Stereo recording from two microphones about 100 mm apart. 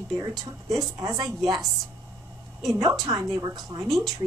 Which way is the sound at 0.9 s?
35° right (ahead or behind).